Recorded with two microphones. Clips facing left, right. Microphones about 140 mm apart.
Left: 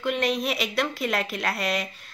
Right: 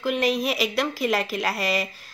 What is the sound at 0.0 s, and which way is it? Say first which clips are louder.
A woman's voice: right 2 dB; centre (ahead or behind).